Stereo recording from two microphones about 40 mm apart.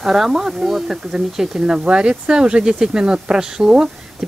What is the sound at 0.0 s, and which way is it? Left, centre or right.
Speech, centre.